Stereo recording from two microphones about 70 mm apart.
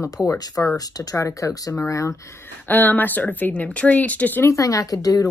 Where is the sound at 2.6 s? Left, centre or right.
Left.